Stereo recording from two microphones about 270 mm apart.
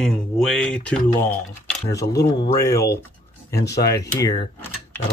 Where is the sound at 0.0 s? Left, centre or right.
Centre.